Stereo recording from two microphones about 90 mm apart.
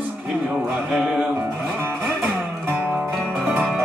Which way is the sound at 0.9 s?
5° right (ahead or behind).